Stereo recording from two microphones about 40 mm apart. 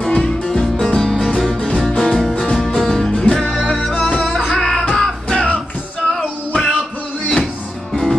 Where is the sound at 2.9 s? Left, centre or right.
Centre.